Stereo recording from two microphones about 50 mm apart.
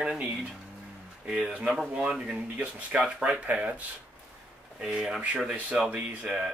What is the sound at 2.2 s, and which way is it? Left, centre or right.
Speech, right.